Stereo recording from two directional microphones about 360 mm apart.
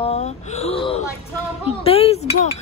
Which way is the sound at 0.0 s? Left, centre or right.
Centre.